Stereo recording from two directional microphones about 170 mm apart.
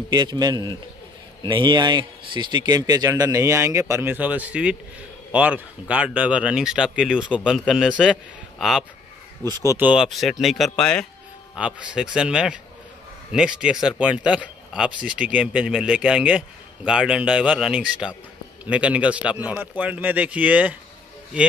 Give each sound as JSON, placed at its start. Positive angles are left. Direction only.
{"t": 0.1, "sound": "speech", "side_deg": -25}
{"t": 9.4, "sound": "speech", "side_deg": -20}
{"t": 9.8, "sound": "speech", "side_deg": -5}
{"t": 11.5, "sound": "a man's voice", "side_deg": -5}